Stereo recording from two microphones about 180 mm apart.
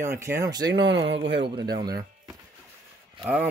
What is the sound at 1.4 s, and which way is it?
Speech, 25° right (ahead or behind).